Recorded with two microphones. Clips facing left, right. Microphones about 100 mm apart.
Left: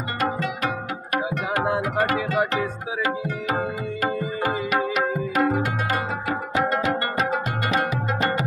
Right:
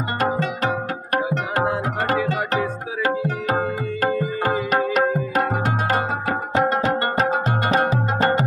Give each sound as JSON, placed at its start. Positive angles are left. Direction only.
{"t": 4.0, "sound": "music", "side_deg": -40}